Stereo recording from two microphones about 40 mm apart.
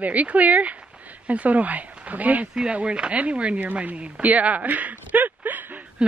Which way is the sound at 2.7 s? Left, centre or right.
Right.